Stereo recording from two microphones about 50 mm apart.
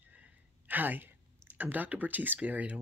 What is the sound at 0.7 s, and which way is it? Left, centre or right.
Speech, right.